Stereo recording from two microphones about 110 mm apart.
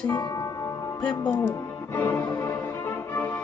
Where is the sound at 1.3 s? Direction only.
25° left (ahead or behind).